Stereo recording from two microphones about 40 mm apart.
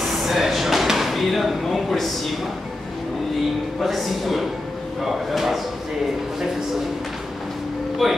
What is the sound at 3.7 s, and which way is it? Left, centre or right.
A man's voice, centre.